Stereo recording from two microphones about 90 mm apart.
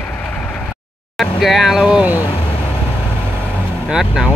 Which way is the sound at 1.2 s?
Centre (ahead or behind).